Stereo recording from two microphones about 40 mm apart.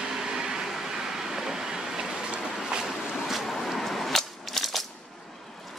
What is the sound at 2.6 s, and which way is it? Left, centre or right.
Boat, centre.